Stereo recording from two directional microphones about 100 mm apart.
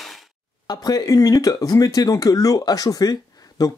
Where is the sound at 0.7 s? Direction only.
40° left (ahead or behind).